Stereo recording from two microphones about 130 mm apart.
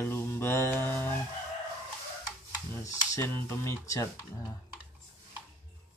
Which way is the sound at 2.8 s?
25° left (ahead or behind).